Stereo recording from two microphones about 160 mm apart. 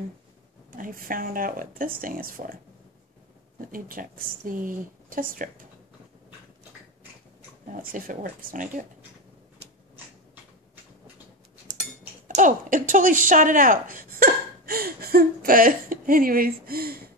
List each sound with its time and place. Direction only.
0.7 s speech: 60° right (ahead or behind)
3.7 s speech: 60° right (ahead or behind)
7.7 s speech: 55° right (ahead or behind)
12.4 s speech: 55° right (ahead or behind); by 17.1 s 70° right (ahead or behind)